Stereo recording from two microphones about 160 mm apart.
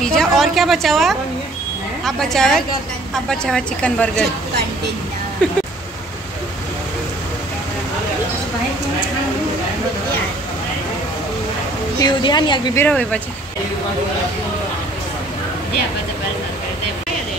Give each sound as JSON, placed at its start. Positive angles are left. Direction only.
{"t": 0.0, "sound": "a sound", "side_deg": 5}
{"t": 2.0, "sound": "a woman's voice", "side_deg": 0}
{"t": 12.0, "sound": "a woman's voice", "side_deg": 30}
{"t": 12.7, "sound": "speech", "side_deg": 10}